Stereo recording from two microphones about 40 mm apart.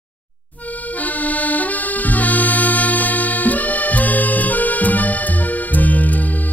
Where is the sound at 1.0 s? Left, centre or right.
Left.